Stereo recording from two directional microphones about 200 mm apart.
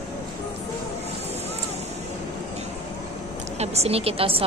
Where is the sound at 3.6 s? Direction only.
30° right (ahead or behind).